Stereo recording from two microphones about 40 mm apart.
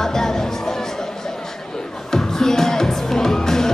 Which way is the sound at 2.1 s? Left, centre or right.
Centre.